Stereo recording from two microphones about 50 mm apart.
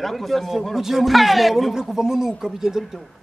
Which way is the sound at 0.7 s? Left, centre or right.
Centre.